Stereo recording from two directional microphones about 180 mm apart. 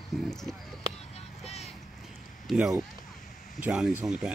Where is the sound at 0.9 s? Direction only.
35° left (ahead or behind).